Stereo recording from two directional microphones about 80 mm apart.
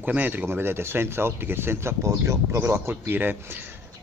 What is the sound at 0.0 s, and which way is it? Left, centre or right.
Speech, right.